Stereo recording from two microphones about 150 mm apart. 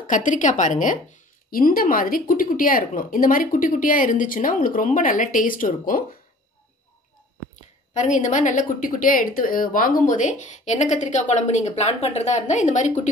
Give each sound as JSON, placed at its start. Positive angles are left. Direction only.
{"t": 0.0, "sound": "a woman's voice", "side_deg": 60}
{"t": 7.9, "sound": "a woman's voice", "side_deg": 55}